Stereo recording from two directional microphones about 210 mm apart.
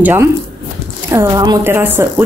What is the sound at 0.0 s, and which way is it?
Speech, 10° right (ahead or behind).